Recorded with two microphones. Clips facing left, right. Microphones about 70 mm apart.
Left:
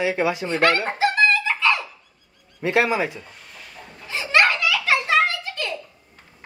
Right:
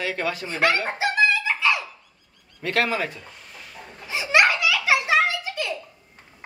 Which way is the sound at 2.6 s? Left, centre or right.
Centre.